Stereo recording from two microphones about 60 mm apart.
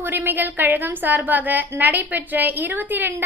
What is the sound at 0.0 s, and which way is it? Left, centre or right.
A woman's voice, right.